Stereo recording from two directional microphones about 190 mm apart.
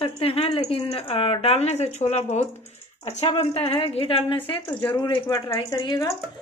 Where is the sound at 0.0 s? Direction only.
30° left (ahead or behind).